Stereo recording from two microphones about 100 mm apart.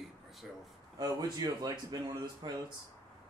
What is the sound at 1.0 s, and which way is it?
Speech, 40° right (ahead or behind).